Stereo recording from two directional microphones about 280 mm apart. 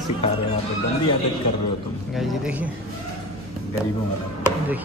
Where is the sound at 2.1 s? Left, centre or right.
Centre.